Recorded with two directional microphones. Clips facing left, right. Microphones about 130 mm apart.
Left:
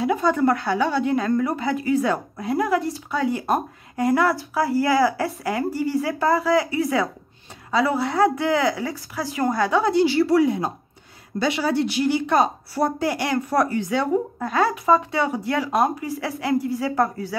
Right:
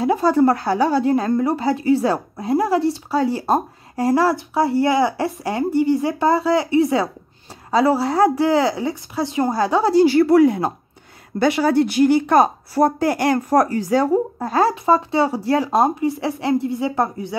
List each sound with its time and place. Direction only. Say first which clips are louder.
0.0 s a woman's voice: right 4 dB; 35° right (ahead or behind)
10.0 s speech: right 5 dB; 55° right (ahead or behind); by 17.4 s 25° right (ahead or behind)